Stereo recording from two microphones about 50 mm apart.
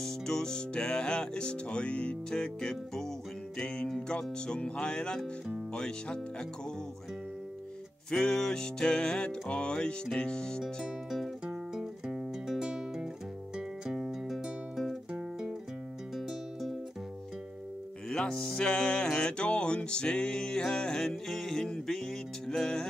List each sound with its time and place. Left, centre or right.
0.0 s music: centre
8.1 s music: centre
11.4 s music: centre
16.2 s music: centre
18.1 s music: centre